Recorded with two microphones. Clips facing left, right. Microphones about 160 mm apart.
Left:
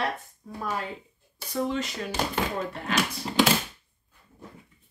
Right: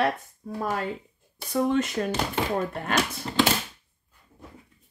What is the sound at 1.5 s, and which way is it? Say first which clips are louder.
Speech: right 5 dB; 50° right (ahead or behind).